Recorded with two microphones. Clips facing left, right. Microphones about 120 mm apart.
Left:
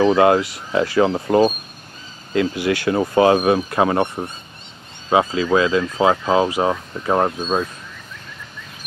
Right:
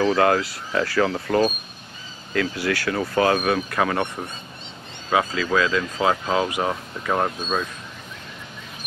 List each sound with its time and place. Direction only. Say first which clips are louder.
0.0 s speech: left 5 dB; 20° left (ahead or behind)